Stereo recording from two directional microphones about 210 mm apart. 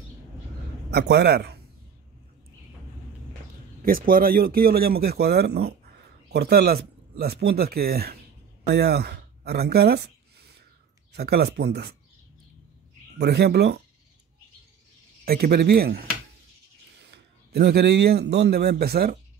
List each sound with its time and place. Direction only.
0.9 s a man's voice: 50° right (ahead or behind)
3.8 s a man's voice: 45° right (ahead or behind)
8.6 s a sound: 50° right (ahead or behind)
11.1 s a man's voice: 50° right (ahead or behind)
13.2 s a man's voice: 50° right (ahead or behind)
15.2 s a man's voice: 45° right (ahead or behind)